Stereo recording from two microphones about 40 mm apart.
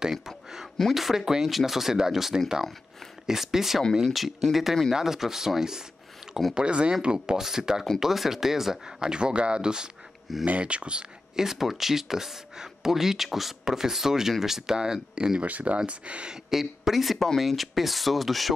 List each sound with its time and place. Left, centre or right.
0.0 s a sound: centre
0.9 s speech: centre
4.2 s speech: centre
6.5 s speech: right
7.3 s speech: centre
10.4 s speech: right
11.3 s speech: centre
15.4 s speech: right
16.4 s speech: centre